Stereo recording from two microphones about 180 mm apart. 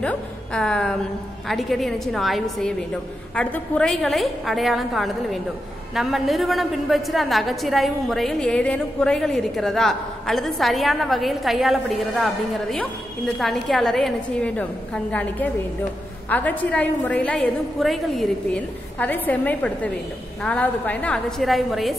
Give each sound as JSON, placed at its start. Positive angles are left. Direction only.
{"t": 0.0, "sound": "a woman's voice", "side_deg": 5}